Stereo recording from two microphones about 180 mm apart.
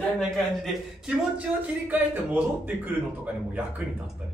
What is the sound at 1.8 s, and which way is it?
Speech, 10° right (ahead or behind).